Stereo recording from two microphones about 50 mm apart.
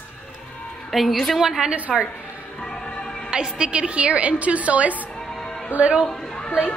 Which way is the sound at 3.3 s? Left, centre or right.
Centre.